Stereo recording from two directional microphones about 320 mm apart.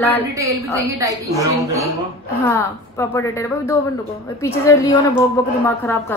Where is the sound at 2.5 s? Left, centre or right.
Centre.